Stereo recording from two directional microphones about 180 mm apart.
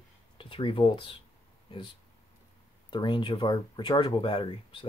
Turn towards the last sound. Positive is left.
turn(degrees=30)  # may be behind; listen again after turning